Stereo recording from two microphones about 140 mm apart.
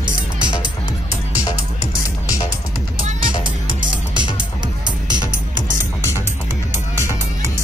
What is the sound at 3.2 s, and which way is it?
Music, 35° right (ahead or behind).